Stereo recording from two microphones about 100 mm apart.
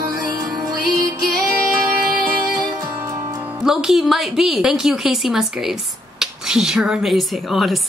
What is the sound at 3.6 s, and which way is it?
Speech, 5° right (ahead or behind).